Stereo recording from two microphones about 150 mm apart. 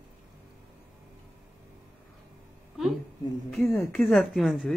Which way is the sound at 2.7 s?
Centre (ahead or behind).